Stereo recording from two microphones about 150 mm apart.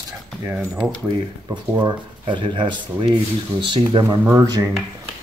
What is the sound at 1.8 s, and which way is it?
Speech, 30° right (ahead or behind).